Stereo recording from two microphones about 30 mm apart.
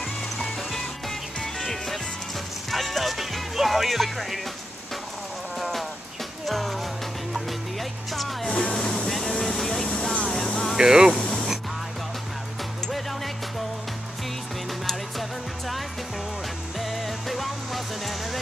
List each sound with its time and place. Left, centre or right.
1.4 s music: centre
6.4 s music: centre
8.1 s music: centre
8.7 s music: left
9.1 s vehicle: centre
10.0 s vehicle: centre
10.8 s speech: centre
11.1 s music: left
16.8 s music: centre